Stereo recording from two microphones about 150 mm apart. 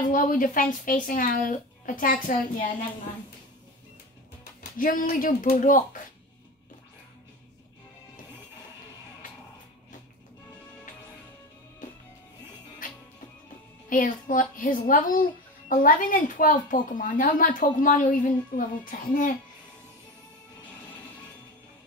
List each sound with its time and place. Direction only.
0.1 s a woman's voice: 65° left (ahead or behind)
4.7 s a woman's voice: 70° left (ahead or behind)
12.8 s music: 60° left (ahead or behind)
13.8 s a woman's voice: 65° left (ahead or behind)